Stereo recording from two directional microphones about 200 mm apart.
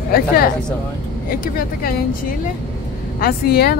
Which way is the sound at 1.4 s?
45° left (ahead or behind).